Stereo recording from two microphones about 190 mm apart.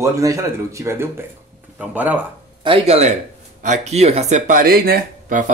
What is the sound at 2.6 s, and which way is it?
Speech, 30° right (ahead or behind).